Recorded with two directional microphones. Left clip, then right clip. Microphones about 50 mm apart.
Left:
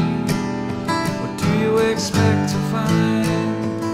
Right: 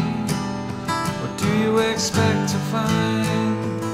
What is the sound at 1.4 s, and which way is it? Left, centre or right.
Music, centre.